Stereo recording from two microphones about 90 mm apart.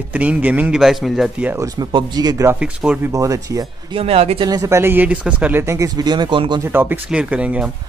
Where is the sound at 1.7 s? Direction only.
50° right (ahead or behind).